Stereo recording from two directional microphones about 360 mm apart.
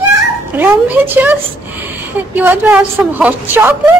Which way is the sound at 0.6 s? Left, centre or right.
Centre.